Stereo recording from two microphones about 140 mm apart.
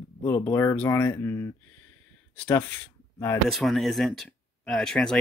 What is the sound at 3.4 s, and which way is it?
Speech, centre (ahead or behind).